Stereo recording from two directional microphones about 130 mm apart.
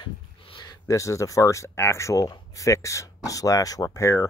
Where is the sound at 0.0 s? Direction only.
35° left (ahead or behind).